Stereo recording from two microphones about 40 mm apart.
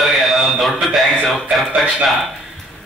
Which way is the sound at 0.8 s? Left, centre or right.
Centre.